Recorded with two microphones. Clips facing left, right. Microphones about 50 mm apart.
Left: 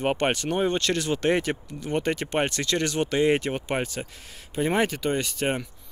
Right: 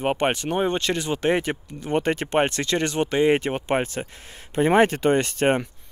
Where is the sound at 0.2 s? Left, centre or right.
Centre.